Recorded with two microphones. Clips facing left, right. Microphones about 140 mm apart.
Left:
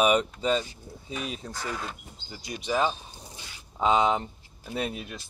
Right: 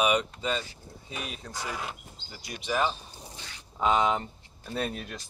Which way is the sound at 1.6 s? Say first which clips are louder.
Even; 10° right (ahead or behind).